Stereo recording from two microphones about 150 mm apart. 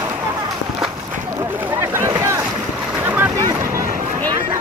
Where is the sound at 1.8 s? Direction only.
20° right (ahead or behind).